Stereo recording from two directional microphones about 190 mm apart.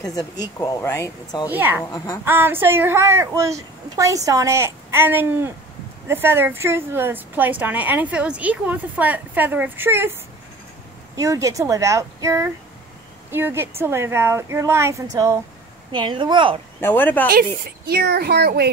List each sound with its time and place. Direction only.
0.0 s speech: 20° left (ahead or behind)
1.5 s a woman's voice: 10° right (ahead or behind)
1.9 s speech: 20° left (ahead or behind)
2.2 s a woman's voice: 10° right (ahead or behind)
11.1 s a woman's voice: 15° right (ahead or behind)
15.9 s a woman's voice: 25° right (ahead or behind)
16.8 s speech: 10° left (ahead or behind)
17.8 s speech: 55° right (ahead or behind)